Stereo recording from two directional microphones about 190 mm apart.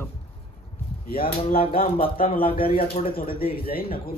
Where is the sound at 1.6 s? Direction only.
30° left (ahead or behind).